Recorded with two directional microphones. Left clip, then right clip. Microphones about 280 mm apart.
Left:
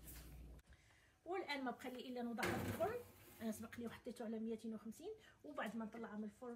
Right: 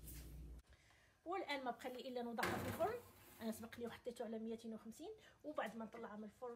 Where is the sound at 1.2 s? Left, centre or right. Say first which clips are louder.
Right 1 dB; right.